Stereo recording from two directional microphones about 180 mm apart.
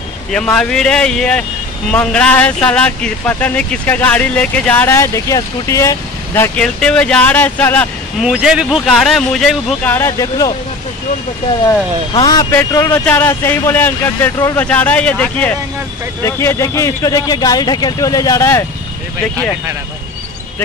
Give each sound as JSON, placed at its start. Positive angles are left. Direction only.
{"t": 0.3, "sound": "speech", "side_deg": 5}
{"t": 8.2, "sound": "speech", "side_deg": -5}
{"t": 9.9, "sound": "speech", "side_deg": 20}
{"t": 12.1, "sound": "speech", "side_deg": 25}
{"t": 12.5, "sound": "speech", "side_deg": 10}